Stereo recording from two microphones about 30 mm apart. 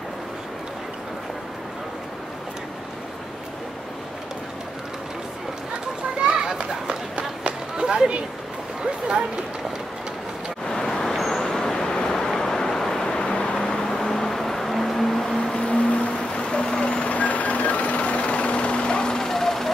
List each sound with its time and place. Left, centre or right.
6.2 s children playing: right
7.7 s a sound: right
10.7 s vehicle: centre
11.1 s vehicle: centre
11.4 s vehicle: centre
13.8 s vehicle: centre
15.5 s a sound: left
16.2 s vehicle: left
17.1 s vehicle: left
19.1 s vehicle: centre